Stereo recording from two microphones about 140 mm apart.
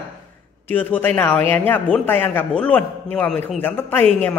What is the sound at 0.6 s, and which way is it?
Speech, 15° left (ahead or behind).